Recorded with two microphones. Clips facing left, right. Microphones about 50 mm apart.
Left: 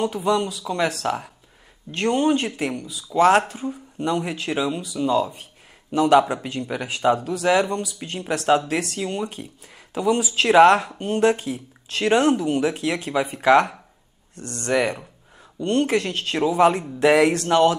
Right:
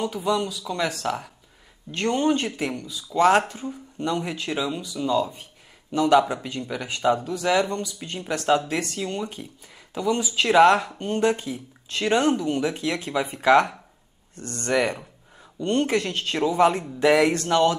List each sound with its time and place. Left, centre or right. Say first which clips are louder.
0.0 s speech: left 3 dB; centre